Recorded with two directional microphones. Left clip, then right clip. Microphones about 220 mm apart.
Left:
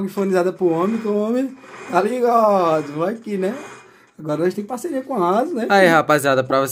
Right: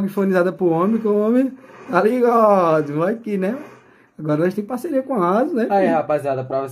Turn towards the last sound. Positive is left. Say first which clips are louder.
# left 5 dB
turn(degrees=45)  # may be behind; listen again after turning